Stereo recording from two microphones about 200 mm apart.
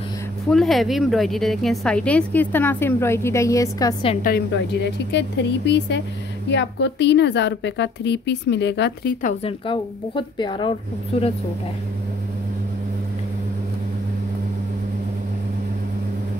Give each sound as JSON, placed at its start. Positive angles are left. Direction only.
{"t": 0.5, "sound": "a woman's voice", "side_deg": 0}
{"t": 4.2, "sound": "a woman's voice", "side_deg": 50}
{"t": 9.2, "sound": "a woman's voice", "side_deg": 30}